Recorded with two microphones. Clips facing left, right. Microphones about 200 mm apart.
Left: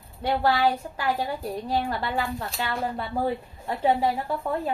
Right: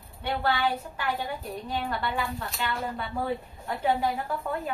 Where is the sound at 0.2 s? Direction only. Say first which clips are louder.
Left 5 dB; 35° left (ahead or behind).